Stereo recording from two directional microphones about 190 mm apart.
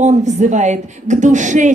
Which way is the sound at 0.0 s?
40° right (ahead or behind).